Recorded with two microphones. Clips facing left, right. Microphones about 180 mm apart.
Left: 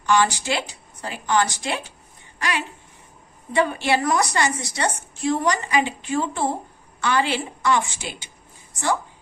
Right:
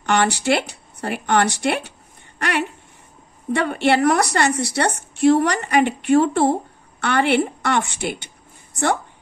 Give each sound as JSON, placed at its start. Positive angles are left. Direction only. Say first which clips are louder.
{"t": 0.0, "sound": "a woman's voice", "louder": "right 1 dB", "side_deg": -65}